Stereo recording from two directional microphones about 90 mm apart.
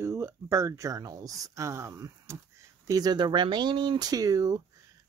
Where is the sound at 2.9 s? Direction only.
50° right (ahead or behind).